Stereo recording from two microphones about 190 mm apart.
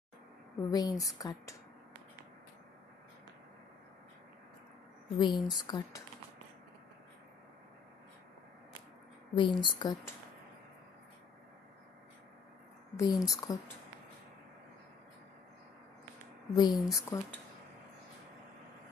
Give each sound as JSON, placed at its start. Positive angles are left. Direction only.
{"t": 0.6, "sound": "speech", "side_deg": 20}
{"t": 5.1, "sound": "speech", "side_deg": 20}
{"t": 9.3, "sound": "speech", "side_deg": 25}
{"t": 12.9, "sound": "speech", "side_deg": 20}
{"t": 16.5, "sound": "speech", "side_deg": 20}